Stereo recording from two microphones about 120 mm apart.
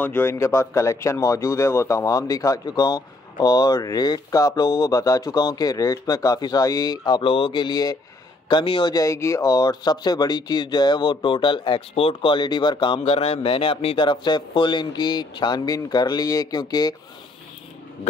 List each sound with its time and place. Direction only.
0.0 s a man's voice: 15° left (ahead or behind); by 8.9 s 40° left (ahead or behind)
8.9 s speech: 25° left (ahead or behind)